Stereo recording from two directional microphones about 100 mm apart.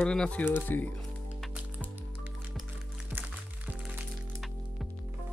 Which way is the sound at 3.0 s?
15° right (ahead or behind).